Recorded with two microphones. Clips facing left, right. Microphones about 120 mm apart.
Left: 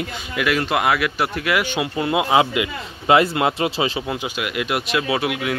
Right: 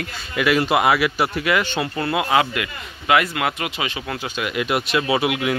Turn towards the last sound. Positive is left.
turn(degrees=-5)  # may be behind; listen again after turning